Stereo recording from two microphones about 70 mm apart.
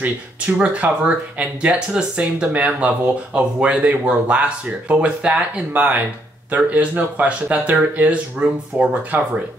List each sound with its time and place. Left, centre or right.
0.0 s speech: right